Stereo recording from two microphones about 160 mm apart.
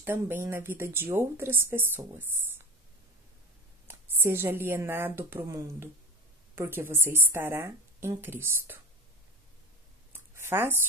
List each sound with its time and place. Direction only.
0.0 s speech: 15° right (ahead or behind)
3.8 s a woman's voice: 15° right (ahead or behind)
10.1 s a sound: 15° right (ahead or behind)